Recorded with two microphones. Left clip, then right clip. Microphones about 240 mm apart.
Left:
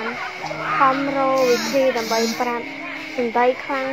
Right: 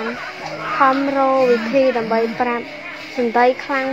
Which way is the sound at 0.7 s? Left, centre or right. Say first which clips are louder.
Right 3 dB; right.